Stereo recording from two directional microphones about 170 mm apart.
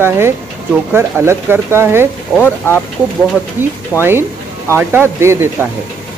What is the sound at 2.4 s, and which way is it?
Speech, 15° left (ahead or behind).